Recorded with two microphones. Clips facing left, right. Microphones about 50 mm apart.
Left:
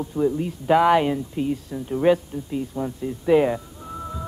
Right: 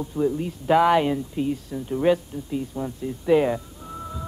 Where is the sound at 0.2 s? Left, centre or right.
Left.